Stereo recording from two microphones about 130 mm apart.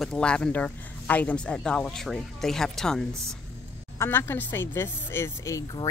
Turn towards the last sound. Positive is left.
turn(degrees=20)  # may be behind; listen again after turning